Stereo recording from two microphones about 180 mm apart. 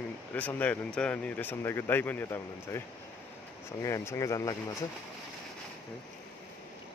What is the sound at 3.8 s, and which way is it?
Speech, 15° left (ahead or behind).